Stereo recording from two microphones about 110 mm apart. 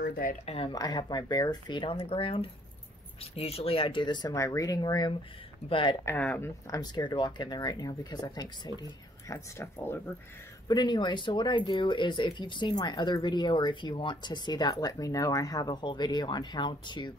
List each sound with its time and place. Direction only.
0.5 s speech: 55° left (ahead or behind)
0.7 s speech: 40° left (ahead or behind); by 2.5 s 55° left (ahead or behind)
3.3 s speech: 65° left (ahead or behind); by 5.1 s 40° left (ahead or behind)
5.7 s speech: 50° left (ahead or behind)
6.1 s speech: 15° left (ahead or behind)
6.7 s speech: 40° left (ahead or behind)
9.3 s speech: 25° left (ahead or behind)
10.7 s speech: 45° left (ahead or behind)